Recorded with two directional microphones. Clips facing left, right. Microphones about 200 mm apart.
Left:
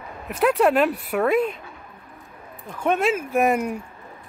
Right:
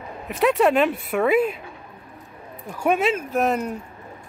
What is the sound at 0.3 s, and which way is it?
Speech, centre (ahead or behind).